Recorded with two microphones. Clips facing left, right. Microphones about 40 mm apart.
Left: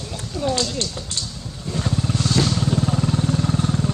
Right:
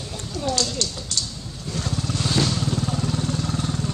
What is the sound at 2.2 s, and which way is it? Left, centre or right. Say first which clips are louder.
Vehicle: left 1 dB; centre.